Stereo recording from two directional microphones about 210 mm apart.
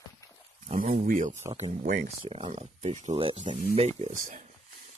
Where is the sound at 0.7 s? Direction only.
40° right (ahead or behind).